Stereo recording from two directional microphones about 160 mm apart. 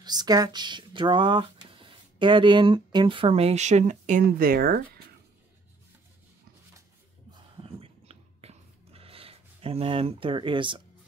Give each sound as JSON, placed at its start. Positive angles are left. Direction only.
{"t": 0.0, "sound": "speech", "side_deg": -25}
{"t": 7.6, "sound": "whispering", "side_deg": -40}